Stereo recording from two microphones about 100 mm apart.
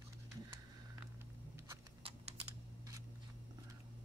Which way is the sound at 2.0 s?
75° right (ahead or behind).